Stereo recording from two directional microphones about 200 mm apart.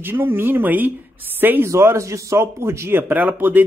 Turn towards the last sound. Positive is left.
turn(degrees=-10)  # may be behind; listen again after turning